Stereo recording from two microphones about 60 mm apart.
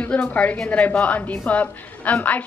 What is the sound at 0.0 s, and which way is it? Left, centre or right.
A woman's voice, left.